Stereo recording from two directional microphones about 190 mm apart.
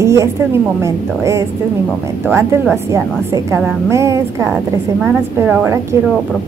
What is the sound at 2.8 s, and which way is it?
A woman's voice, 15° right (ahead or behind).